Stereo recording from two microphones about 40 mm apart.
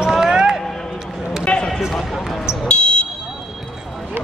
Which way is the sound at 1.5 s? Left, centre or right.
Left.